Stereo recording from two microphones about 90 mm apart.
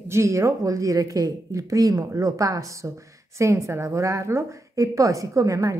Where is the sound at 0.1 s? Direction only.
35° right (ahead or behind).